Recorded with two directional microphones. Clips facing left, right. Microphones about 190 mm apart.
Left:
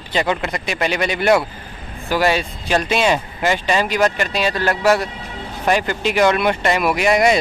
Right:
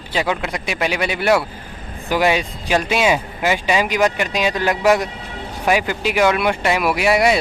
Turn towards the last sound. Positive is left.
turn(degrees=-5)  # may be behind; listen again after turning